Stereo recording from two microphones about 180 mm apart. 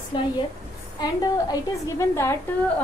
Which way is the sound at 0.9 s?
20° left (ahead or behind).